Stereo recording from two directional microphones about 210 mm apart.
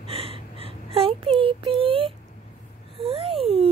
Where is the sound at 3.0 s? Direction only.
25° right (ahead or behind).